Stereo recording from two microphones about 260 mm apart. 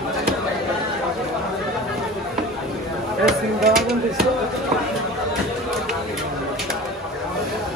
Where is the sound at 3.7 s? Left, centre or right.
Centre.